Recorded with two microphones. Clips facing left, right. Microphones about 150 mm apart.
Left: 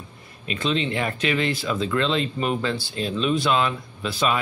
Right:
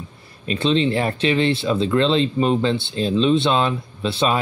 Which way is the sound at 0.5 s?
30° right (ahead or behind).